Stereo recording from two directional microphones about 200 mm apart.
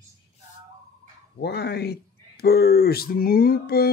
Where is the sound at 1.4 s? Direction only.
55° left (ahead or behind).